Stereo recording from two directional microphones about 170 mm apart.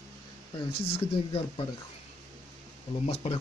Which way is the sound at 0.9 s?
35° left (ahead or behind).